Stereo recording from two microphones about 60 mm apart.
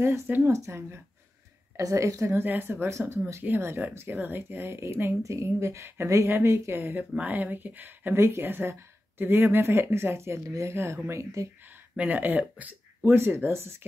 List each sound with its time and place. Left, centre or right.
0.4 s speech: right
1.8 s a woman's voice: right
2.4 s speech: right
2.9 s speech: right
3.4 s speech: right
4.1 s a woman's voice: right
6.2 s speech: right
12.0 s speech: right
13.0 s speech: right